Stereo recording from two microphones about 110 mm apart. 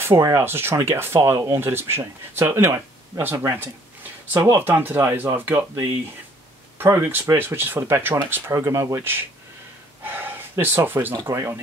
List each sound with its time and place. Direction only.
0.0 s speech: 25° right (ahead or behind)
10.0 s a sound: 20° right (ahead or behind)
10.9 s speech: 20° right (ahead or behind)
11.1 s speech: 30° right (ahead or behind)